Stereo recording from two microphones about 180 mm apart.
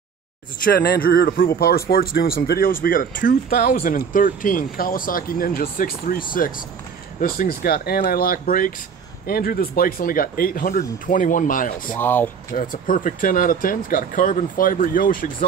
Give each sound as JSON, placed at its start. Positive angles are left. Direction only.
{"t": 0.7, "sound": "speech", "side_deg": 60}
{"t": 11.9, "sound": "speech", "side_deg": 10}
{"t": 12.5, "sound": "speech", "side_deg": 50}